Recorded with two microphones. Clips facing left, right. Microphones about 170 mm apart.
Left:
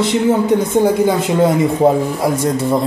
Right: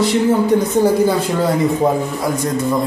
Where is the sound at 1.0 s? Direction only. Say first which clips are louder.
Left 3 dB; 20° left (ahead or behind).